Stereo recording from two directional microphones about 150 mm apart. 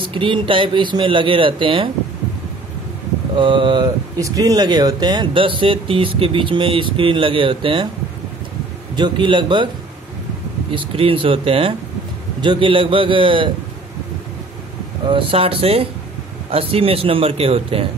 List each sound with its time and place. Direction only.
0.0 s speech: 35° right (ahead or behind)
3.3 s speech: 35° right (ahead or behind)
8.9 s speech: 30° right (ahead or behind)
10.7 s speech: 35° right (ahead or behind)
15.1 s speech: 40° right (ahead or behind)